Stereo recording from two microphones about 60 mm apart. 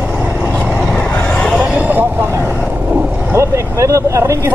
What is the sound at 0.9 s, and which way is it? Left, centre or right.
Vehicle, centre.